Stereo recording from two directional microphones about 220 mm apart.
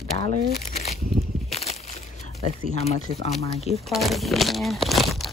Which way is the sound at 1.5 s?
30° left (ahead or behind).